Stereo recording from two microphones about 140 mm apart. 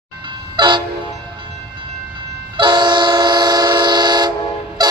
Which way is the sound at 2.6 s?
30° right (ahead or behind).